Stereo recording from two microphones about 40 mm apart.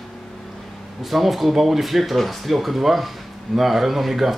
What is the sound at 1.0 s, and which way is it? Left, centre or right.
A man's voice, centre.